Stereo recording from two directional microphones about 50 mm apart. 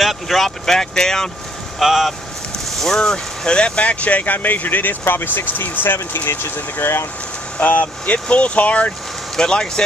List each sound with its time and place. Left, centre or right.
0.0 s speech: centre
1.8 s speech: centre
2.8 s speech: centre; by 7.1 s left
7.5 s speech: left
9.4 s speech: centre